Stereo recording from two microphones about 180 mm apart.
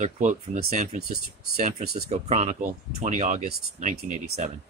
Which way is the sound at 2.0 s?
40° right (ahead or behind).